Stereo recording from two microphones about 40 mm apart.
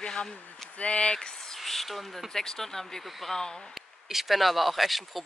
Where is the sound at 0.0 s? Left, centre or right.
Centre.